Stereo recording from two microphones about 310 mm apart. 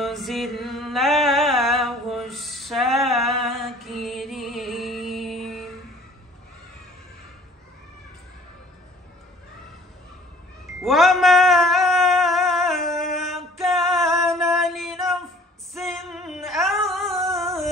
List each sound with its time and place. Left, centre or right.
0.0 s music: centre
10.8 s a sound: centre
15.7 s music: centre